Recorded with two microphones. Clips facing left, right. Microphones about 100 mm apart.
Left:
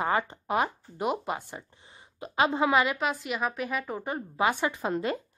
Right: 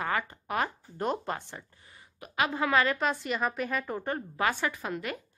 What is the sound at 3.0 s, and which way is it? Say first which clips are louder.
Speech: even; 5° left (ahead or behind).